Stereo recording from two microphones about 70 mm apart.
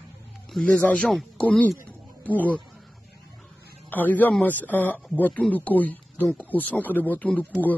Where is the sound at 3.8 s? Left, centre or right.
Left.